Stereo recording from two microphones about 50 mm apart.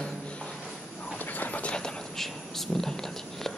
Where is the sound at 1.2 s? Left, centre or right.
Left.